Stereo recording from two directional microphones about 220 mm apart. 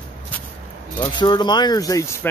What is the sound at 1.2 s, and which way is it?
Speech, 20° left (ahead or behind).